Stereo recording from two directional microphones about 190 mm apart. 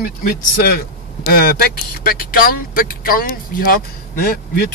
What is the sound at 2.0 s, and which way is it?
Speech, 50° left (ahead or behind).